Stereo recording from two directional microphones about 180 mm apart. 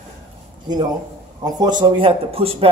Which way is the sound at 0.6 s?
25° right (ahead or behind).